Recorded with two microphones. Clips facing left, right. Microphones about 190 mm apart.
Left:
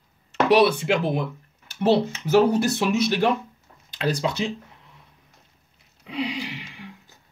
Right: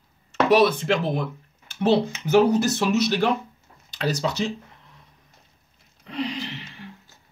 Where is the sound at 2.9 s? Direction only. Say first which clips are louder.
Even; 50° left (ahead or behind).